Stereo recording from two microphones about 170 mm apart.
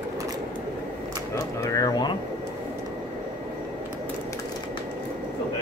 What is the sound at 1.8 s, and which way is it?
Speech, 25° left (ahead or behind).